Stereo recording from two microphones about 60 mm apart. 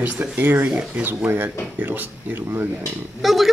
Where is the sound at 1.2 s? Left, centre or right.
Right.